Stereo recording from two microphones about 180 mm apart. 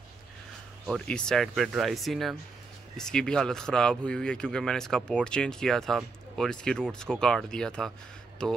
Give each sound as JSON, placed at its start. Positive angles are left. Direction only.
{"t": 0.8, "sound": "speech", "side_deg": 5}